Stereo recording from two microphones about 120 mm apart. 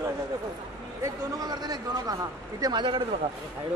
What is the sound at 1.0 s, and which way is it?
A man's voice, 30° right (ahead or behind).